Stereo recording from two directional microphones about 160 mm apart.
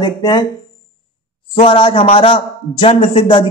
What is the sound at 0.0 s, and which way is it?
Speech, 25° left (ahead or behind).